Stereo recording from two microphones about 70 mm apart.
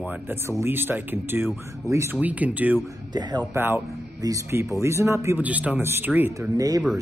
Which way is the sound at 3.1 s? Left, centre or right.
Right.